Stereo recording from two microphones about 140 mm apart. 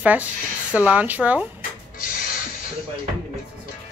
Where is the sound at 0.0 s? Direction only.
10° right (ahead or behind).